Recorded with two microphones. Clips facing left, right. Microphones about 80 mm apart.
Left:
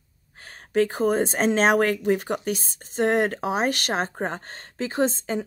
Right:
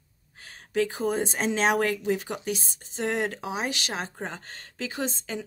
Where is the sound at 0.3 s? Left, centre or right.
Left.